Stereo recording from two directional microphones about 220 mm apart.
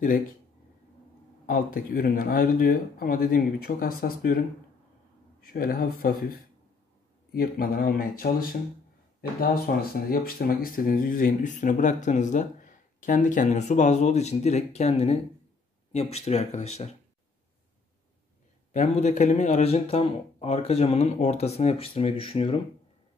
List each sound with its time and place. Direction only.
1.4 s speech: 40° left (ahead or behind)
5.4 s speech: 40° left (ahead or behind)
7.3 s speech: 40° left (ahead or behind)
18.7 s speech: 35° left (ahead or behind)